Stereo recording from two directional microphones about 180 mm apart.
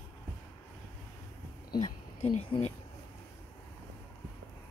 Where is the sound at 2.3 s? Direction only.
35° left (ahead or behind).